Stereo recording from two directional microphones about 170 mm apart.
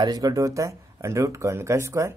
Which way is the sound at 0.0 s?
20° right (ahead or behind).